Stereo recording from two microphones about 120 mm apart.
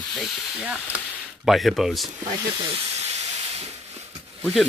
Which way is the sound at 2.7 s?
65° right (ahead or behind).